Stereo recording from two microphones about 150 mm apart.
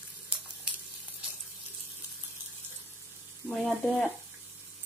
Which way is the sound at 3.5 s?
5° left (ahead or behind).